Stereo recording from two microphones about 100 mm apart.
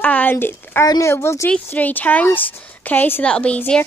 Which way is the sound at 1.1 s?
25° left (ahead or behind).